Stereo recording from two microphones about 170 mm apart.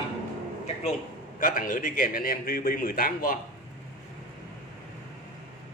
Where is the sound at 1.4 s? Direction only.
55° left (ahead or behind).